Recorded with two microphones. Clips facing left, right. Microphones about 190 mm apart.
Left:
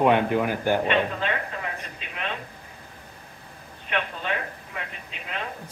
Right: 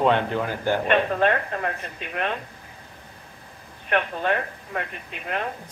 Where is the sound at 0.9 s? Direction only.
55° right (ahead or behind).